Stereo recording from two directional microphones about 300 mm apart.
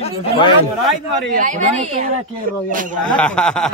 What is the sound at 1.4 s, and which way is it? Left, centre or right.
A woman's voice, right.